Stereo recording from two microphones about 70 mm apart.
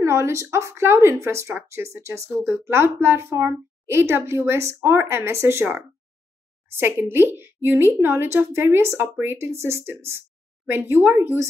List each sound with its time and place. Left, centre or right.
0.0 s a woman's voice: right